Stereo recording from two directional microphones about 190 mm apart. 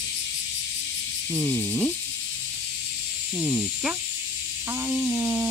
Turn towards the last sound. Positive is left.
turn(degrees=-5)  # may be behind; listen again after turning